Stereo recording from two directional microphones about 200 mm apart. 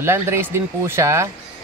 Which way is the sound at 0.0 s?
10° right (ahead or behind).